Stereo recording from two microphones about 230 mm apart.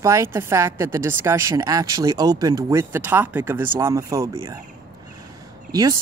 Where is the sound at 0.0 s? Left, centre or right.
Centre.